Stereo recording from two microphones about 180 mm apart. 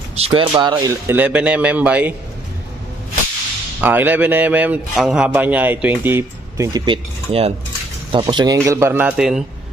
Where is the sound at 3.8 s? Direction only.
10° right (ahead or behind).